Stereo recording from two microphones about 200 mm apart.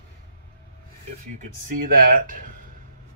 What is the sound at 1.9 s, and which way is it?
Speech, 45° right (ahead or behind).